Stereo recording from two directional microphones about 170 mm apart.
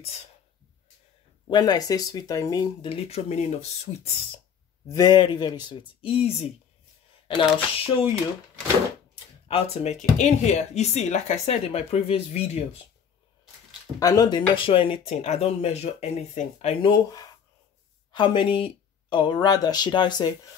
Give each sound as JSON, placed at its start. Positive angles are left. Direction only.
{"t": 1.5, "sound": "speech", "side_deg": 25}
{"t": 4.8, "sound": "speech", "side_deg": 20}
{"t": 7.5, "sound": "speech", "side_deg": 35}
{"t": 9.5, "sound": "speech", "side_deg": 40}
{"t": 13.9, "sound": "speech", "side_deg": 20}
{"t": 16.9, "sound": "speech", "side_deg": 20}